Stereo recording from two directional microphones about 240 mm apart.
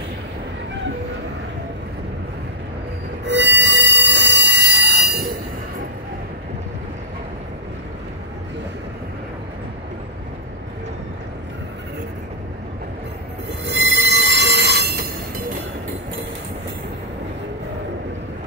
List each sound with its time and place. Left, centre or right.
3.3 s train wheels squealing: right
13.7 s train wheels squealing: right